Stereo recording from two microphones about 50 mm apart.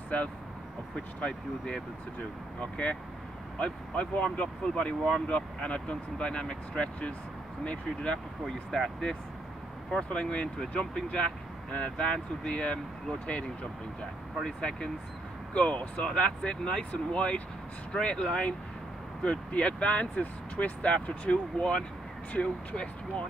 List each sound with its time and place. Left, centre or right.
0.9 s speech: centre
8.5 s speech: centre
10.0 s speech: left